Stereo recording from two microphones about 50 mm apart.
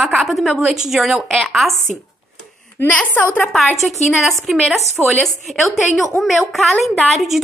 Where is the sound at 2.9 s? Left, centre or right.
Left.